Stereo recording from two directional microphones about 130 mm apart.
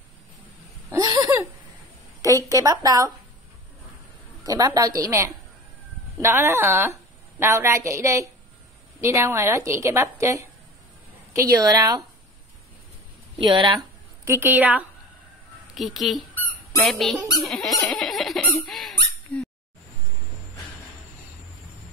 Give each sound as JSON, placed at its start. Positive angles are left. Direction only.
{"t": 0.9, "sound": "a sound", "side_deg": -25}
{"t": 2.5, "sound": "a woman's voice", "side_deg": -30}
{"t": 4.4, "sound": "a woman's voice", "side_deg": -30}
{"t": 13.4, "sound": "speech", "side_deg": -40}
{"t": 14.2, "sound": "a woman's voice", "side_deg": -20}
{"t": 15.7, "sound": "a woman's voice", "side_deg": 0}
{"t": 17.4, "sound": "squeak", "side_deg": 0}
{"t": 17.9, "sound": "fowl", "side_deg": 0}